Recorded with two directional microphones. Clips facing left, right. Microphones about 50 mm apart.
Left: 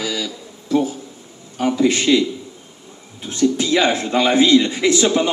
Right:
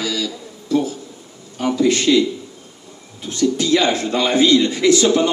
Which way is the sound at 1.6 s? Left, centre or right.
Centre.